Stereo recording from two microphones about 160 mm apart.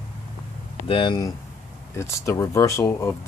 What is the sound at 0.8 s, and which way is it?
Speech, 30° left (ahead or behind).